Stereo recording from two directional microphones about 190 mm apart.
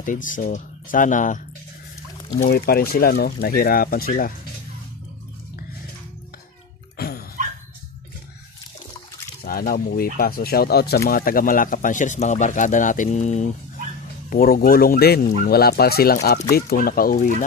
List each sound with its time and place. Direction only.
0.0 s speech: 45° left (ahead or behind)
7.0 s dog: 55° left (ahead or behind)
9.4 s speech: 50° left (ahead or behind)
14.3 s speech: 50° left (ahead or behind)